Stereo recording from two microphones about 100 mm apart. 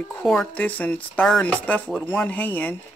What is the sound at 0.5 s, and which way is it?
Speech, 15° left (ahead or behind).